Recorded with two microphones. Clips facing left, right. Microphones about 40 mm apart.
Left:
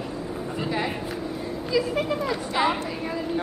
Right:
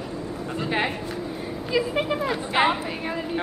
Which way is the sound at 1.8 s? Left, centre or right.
Right.